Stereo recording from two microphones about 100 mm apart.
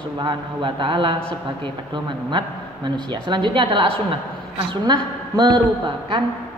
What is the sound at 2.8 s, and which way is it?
A woman's voice, 50° right (ahead or behind).